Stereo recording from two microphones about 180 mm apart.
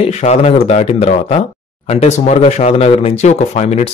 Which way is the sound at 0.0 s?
40° left (ahead or behind).